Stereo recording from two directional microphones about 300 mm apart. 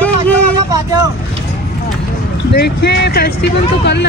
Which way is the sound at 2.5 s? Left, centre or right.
Left.